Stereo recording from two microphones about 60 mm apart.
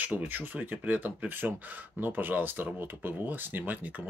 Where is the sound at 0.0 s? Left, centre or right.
Right.